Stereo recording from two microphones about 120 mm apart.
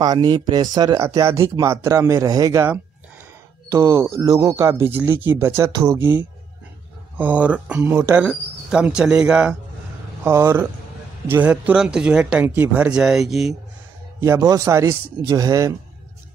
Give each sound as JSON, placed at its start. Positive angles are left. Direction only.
{"t": 0.0, "sound": "speech", "side_deg": -35}
{"t": 5.7, "sound": "speech", "side_deg": -30}
{"t": 5.9, "sound": "speech", "side_deg": -15}
{"t": 10.2, "sound": "speech", "side_deg": -20}
{"t": 14.2, "sound": "speech", "side_deg": -25}